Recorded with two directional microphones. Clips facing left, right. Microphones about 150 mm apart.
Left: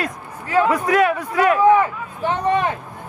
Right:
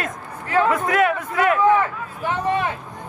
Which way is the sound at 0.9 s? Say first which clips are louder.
Left 2 dB; 20° left (ahead or behind).